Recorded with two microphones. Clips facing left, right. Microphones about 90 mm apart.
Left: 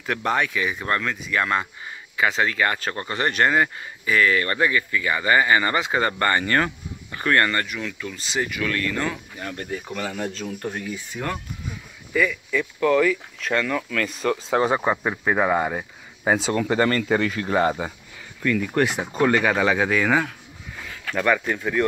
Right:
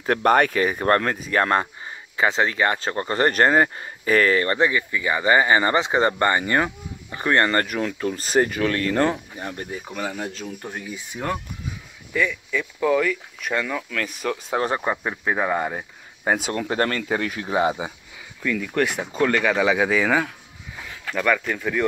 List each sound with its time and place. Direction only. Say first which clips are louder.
0.2 s speech: right 6 dB; 50° right (ahead or behind)
1.9 s speech: left 2 dB; 30° right (ahead or behind)
3.2 s speech: right 3 dB; 40° right (ahead or behind)
4.5 s speech: right 1 dB; 20° right (ahead or behind)
7.5 s speech: right 4 dB; 45° right (ahead or behind)
9.1 s speech: right 2 dB; 20° right (ahead or behind)
12.1 s speech: left 1 dB; centre (ahead or behind)
16.3 s speech: left 2 dB; 5° right (ahead or behind)
21.2 s speech: even; 5° left (ahead or behind)